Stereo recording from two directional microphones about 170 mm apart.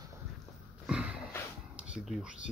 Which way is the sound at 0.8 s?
5° right (ahead or behind).